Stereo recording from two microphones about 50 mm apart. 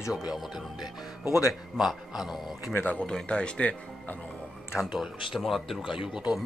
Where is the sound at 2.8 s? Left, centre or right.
Left.